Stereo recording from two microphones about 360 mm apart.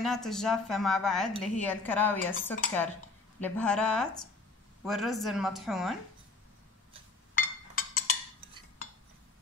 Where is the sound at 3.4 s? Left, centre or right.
Centre.